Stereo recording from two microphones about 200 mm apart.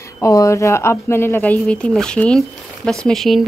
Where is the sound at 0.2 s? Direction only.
15° left (ahead or behind).